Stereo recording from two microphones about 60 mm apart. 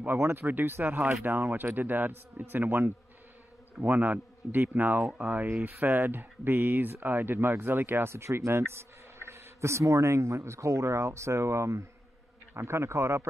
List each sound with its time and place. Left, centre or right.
0.2 s a man's voice: right